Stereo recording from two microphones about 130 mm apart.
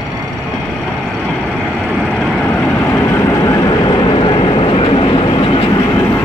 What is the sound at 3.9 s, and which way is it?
Vehicle, 35° left (ahead or behind).